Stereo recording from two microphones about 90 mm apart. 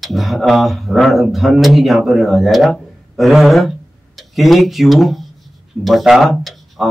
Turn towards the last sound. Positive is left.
turn(degrees=0)  # may be behind; listen again after turning